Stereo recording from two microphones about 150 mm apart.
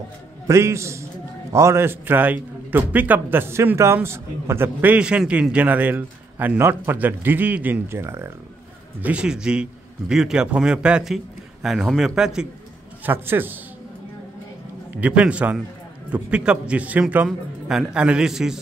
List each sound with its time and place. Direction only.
0.5 s a man's voice: 20° right (ahead or behind)
9.0 s a man's voice: 5° right (ahead or behind)
13.0 s a man's voice: 15° right (ahead or behind)
14.9 s a man's voice: 10° right (ahead or behind)